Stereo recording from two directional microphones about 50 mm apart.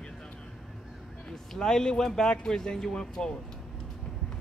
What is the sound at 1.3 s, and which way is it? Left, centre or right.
Speech, centre.